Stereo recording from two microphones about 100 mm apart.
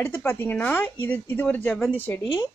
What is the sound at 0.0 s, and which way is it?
Speech, 20° left (ahead or behind).